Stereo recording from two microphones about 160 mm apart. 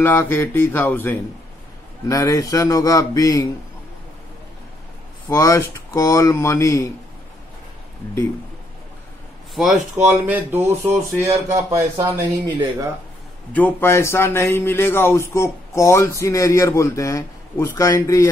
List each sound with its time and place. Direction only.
0.0 s speech: 15° left (ahead or behind)
5.3 s speech: 20° left (ahead or behind)
9.6 s speech: centre (ahead or behind); by 12.3 s 15° right (ahead or behind)
13.5 s speech: 10° left (ahead or behind)